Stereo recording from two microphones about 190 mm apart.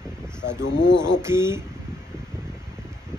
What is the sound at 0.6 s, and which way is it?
Speech, 70° left (ahead or behind).